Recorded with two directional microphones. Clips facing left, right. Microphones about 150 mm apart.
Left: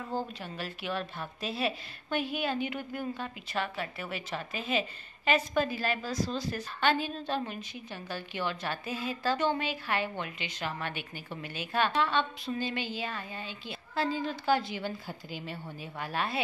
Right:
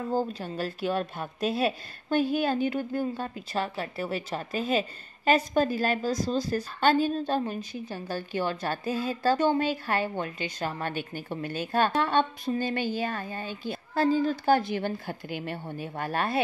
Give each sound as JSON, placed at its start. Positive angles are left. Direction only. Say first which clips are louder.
{"t": 0.1, "sound": "a woman's voice", "louder": "right 6 dB", "side_deg": -40}